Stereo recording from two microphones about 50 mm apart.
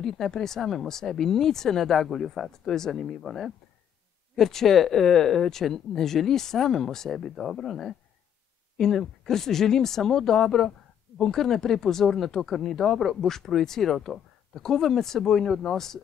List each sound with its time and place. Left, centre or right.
0.0 s speech: centre